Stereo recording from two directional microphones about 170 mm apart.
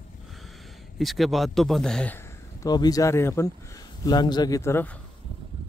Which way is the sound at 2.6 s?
25° left (ahead or behind).